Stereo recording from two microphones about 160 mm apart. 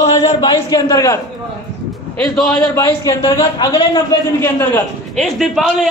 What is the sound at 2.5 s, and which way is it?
Speech, 20° left (ahead or behind).